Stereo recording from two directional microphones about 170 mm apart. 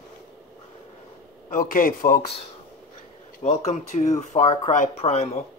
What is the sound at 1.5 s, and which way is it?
Speech, 55° left (ahead or behind).